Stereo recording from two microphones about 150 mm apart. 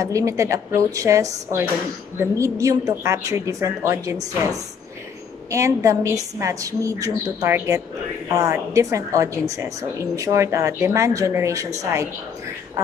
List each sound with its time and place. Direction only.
0.0 s a woman's voice: 20° right (ahead or behind)